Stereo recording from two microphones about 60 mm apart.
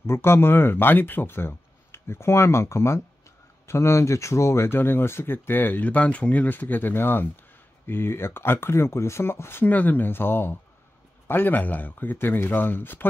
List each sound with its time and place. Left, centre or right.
0.0 s speech: left
9.7 s speech: left